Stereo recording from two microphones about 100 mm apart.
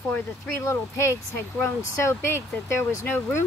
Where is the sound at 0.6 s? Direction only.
25° left (ahead or behind).